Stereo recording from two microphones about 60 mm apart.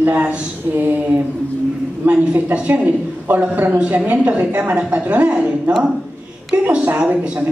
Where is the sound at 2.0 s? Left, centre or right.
Right.